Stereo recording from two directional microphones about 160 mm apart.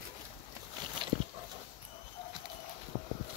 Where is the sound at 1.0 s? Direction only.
30° right (ahead or behind).